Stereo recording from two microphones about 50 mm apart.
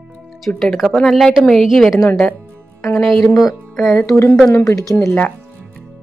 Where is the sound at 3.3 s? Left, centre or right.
Centre.